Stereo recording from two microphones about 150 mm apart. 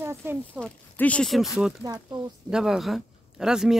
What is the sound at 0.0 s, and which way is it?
Speech, 15° right (ahead or behind).